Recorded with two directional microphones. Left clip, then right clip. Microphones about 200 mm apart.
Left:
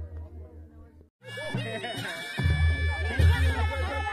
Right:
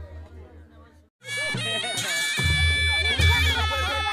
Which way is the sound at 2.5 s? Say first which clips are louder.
Right 11 dB; 60° right (ahead or behind).